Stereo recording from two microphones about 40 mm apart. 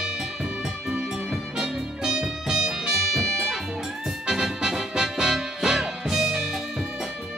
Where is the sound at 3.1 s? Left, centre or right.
Centre.